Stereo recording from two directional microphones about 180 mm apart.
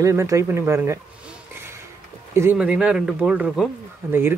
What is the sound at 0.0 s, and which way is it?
Speech, 15° right (ahead or behind).